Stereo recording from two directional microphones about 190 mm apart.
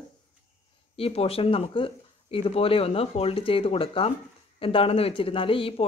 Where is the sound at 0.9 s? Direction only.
30° left (ahead or behind).